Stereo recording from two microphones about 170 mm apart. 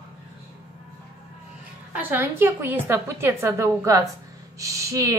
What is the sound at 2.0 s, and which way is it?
A woman's voice, 10° right (ahead or behind).